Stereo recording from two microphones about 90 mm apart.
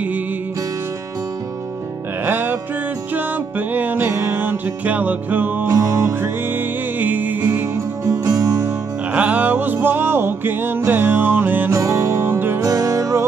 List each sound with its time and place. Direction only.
2.2 s music: 25° right (ahead or behind)
5.7 s music: 35° right (ahead or behind)
6.2 s music: 20° right (ahead or behind)
8.1 s music: 40° right (ahead or behind)
9.1 s music: 15° right (ahead or behind)
11.7 s music: 35° right (ahead or behind)
12.6 s music: 40° right (ahead or behind)